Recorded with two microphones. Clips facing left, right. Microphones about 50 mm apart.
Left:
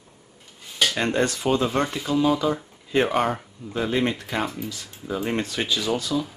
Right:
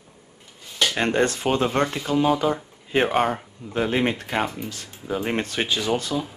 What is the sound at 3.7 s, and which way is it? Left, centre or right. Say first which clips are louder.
Speech: right 1 dB; right.